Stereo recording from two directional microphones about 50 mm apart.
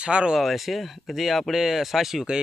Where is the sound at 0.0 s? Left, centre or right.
Centre.